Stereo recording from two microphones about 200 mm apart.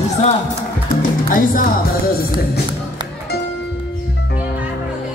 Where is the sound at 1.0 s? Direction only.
40° left (ahead or behind).